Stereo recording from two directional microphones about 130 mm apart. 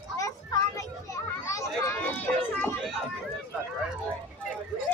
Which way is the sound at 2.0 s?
10° left (ahead or behind).